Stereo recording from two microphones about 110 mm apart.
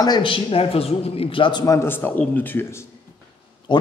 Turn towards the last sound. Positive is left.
turn(degrees=45)  # may be behind; listen again after turning